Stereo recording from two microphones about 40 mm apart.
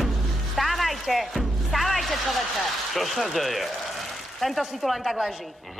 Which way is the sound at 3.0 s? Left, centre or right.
Centre.